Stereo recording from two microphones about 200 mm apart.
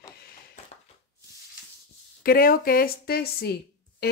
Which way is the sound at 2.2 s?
45° left (ahead or behind).